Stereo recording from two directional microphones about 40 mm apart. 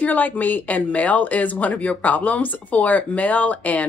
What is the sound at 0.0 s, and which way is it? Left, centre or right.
Speech, left.